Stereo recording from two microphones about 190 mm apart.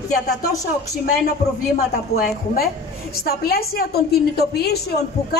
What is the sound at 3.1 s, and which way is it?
A woman's voice, 55° left (ahead or behind).